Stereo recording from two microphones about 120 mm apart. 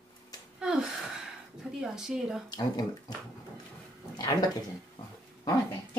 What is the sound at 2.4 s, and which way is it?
Speech, 35° left (ahead or behind).